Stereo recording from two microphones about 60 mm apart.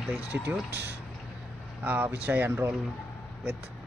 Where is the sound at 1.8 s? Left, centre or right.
Right.